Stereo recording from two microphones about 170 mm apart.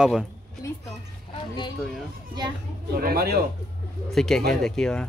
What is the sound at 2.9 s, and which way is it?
Speech, 60° right (ahead or behind).